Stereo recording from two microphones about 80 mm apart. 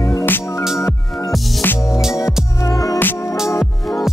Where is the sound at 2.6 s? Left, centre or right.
Left.